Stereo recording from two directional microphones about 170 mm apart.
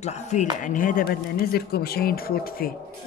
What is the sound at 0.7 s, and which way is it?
Speech, 50° left (ahead or behind).